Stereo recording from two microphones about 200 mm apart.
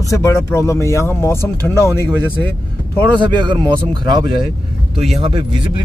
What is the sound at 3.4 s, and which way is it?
Speech, 20° right (ahead or behind).